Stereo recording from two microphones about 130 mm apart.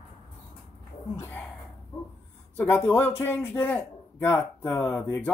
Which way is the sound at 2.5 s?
15° left (ahead or behind).